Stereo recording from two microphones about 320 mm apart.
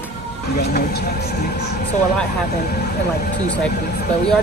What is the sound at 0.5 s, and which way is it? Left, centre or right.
Speech, left.